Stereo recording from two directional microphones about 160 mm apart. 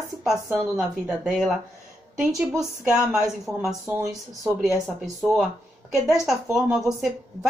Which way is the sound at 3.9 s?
20° right (ahead or behind).